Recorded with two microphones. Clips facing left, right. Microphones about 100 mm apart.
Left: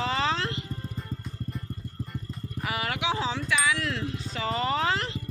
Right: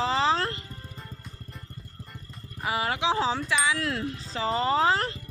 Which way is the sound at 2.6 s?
25° right (ahead or behind).